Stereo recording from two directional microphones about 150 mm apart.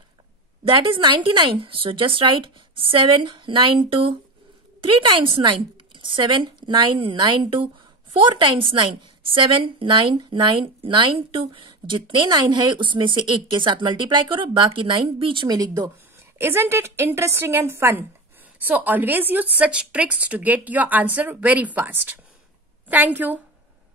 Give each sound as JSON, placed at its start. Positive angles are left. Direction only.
{"t": 0.7, "sound": "a woman's voice", "side_deg": -35}